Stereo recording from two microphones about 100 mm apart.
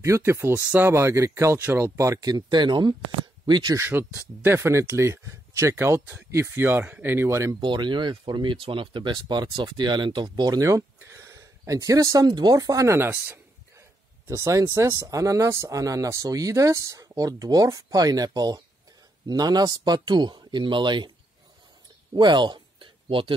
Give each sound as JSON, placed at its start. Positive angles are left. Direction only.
{"t": 0.0, "sound": "speech", "side_deg": -30}
{"t": 3.7, "sound": "speech", "side_deg": -20}
{"t": 7.6, "sound": "speech", "side_deg": -50}
{"t": 22.1, "sound": "a sound", "side_deg": -50}